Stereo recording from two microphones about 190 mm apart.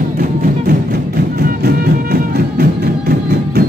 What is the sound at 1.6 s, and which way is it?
Music, 50° right (ahead or behind).